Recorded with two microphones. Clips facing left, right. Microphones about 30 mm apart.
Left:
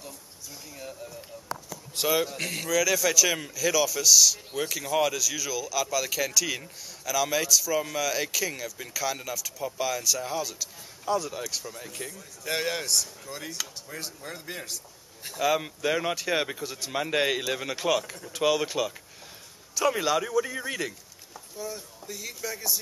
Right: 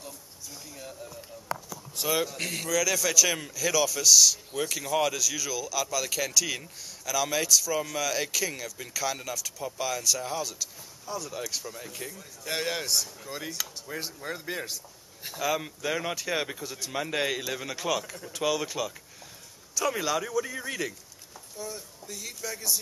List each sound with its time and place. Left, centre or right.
0.7 s speech: centre
2.0 s speech: left
2.3 s speech: centre
15.3 s speech: centre